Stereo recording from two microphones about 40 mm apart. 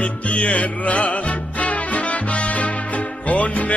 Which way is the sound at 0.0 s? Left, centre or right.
Left.